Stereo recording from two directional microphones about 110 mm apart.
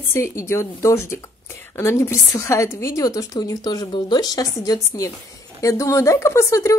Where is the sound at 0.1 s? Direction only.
25° left (ahead or behind).